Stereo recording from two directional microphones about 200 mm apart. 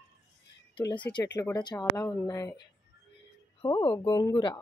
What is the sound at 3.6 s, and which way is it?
Speech, 20° left (ahead or behind).